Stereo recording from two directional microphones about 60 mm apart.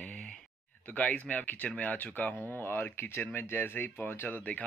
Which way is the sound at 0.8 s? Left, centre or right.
Left.